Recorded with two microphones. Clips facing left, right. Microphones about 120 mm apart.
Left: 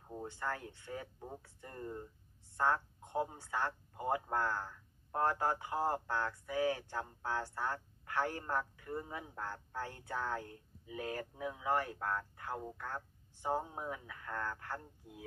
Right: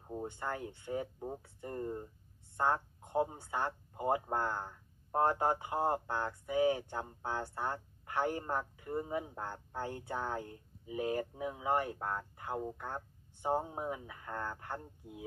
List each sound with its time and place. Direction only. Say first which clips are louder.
0.2 s speech: right 1 dB; 20° right (ahead or behind)